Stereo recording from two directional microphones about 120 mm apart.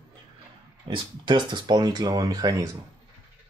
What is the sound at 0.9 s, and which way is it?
Speech, 40° right (ahead or behind).